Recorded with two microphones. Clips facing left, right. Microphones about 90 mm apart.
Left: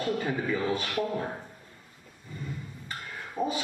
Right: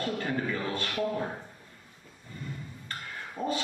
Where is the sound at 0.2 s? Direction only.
10° left (ahead or behind).